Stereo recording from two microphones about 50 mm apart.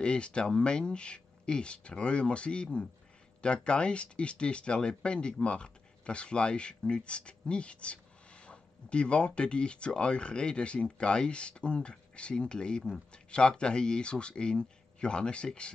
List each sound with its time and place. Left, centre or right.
0.0 s speech: centre